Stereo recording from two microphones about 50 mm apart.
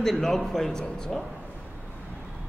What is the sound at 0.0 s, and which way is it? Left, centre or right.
A man's voice, centre.